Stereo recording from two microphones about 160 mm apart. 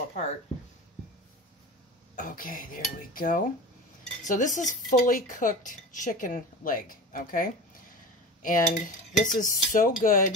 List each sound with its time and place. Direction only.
2.1 s speech: 60° left (ahead or behind)
8.4 s cutlery: 55° left (ahead or behind)
9.4 s speech: 60° left (ahead or behind)